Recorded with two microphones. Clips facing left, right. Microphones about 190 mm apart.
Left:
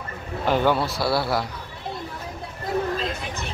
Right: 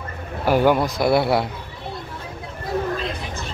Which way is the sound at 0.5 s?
10° right (ahead or behind).